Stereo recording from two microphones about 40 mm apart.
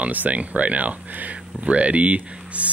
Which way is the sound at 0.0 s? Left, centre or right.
Right.